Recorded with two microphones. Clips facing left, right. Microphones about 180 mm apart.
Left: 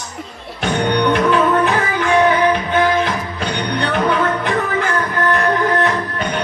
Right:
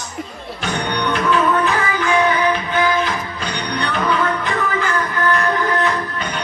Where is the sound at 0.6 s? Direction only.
55° left (ahead or behind).